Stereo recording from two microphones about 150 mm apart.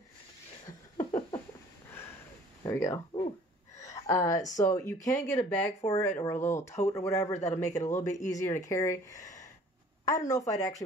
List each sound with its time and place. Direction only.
0.7 s a sound: 25° left (ahead or behind)
2.6 s speech: 20° left (ahead or behind)
7.3 s a man's voice: 50° left (ahead or behind)
7.8 s speech: 20° left (ahead or behind)